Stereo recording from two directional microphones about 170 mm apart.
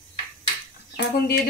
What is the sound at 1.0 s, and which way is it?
Speech, 65° left (ahead or behind).